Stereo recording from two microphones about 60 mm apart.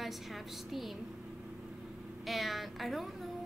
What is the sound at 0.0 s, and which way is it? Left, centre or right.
Speech, centre.